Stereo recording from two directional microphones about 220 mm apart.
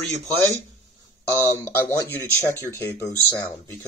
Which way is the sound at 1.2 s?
10° left (ahead or behind).